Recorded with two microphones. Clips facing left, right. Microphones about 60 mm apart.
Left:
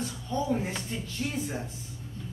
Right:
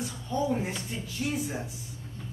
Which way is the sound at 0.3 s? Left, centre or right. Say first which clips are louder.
Right 1 dB; centre.